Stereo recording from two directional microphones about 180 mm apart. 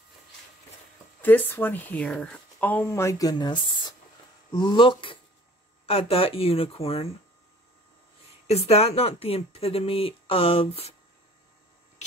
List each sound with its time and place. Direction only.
1.2 s speech: 10° left (ahead or behind); by 7.2 s 30° left (ahead or behind)
8.5 s speech: 35° left (ahead or behind)